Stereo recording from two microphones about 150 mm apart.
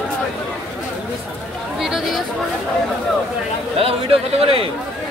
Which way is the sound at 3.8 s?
40° right (ahead or behind).